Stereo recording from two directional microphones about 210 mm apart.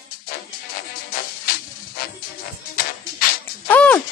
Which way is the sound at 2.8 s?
45° left (ahead or behind).